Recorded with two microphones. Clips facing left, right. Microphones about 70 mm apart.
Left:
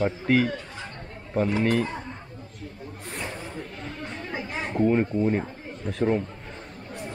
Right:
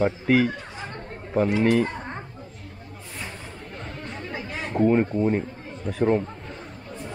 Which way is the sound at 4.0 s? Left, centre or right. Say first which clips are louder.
Left 1 dB; centre.